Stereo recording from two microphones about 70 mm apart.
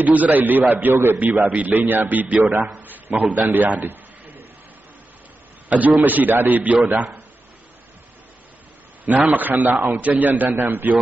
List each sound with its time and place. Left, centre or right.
0.0 s a man's voice: right
5.7 s a man's voice: right
9.3 s a man's voice: right